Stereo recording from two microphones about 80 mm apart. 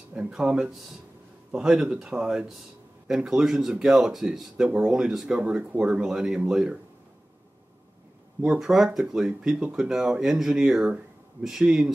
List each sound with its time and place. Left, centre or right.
0.1 s speech: centre
8.4 s speech: centre